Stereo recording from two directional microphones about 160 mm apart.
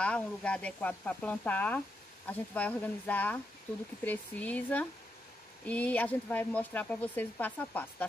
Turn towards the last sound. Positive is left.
turn(degrees=10)  # may be behind; listen again after turning